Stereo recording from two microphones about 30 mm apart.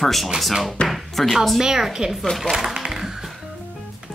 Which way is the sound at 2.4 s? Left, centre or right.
Centre.